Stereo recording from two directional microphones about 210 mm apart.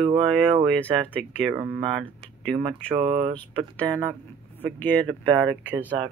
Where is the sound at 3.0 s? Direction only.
30° right (ahead or behind).